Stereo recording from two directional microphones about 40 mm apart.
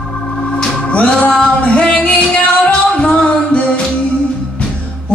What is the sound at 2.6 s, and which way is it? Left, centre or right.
Music, left.